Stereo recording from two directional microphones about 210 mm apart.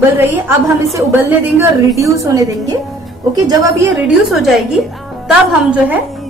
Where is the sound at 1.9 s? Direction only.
15° right (ahead or behind).